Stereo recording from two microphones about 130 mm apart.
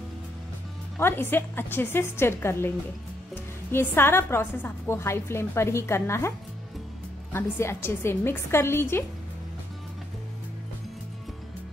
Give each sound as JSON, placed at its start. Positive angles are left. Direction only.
{"t": 0.9, "sound": "a woman's voice", "side_deg": 15}
{"t": 3.7, "sound": "a woman's voice", "side_deg": 15}
{"t": 7.3, "sound": "a woman's voice", "side_deg": 20}